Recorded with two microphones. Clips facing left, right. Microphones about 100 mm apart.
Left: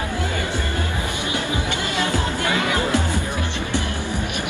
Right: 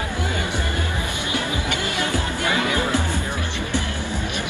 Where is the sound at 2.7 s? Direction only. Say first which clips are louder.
Left 1 dB; 20° left (ahead or behind).